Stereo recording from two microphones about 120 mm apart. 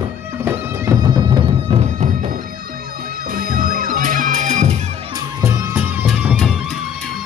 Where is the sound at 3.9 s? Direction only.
90° right.